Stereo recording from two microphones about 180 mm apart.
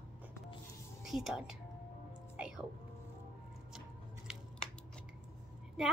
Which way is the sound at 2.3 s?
5° right (ahead or behind).